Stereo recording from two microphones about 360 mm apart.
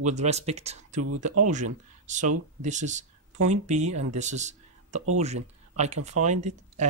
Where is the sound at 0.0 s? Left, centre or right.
Centre.